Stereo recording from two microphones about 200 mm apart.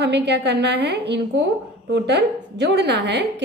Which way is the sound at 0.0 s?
55° right (ahead or behind).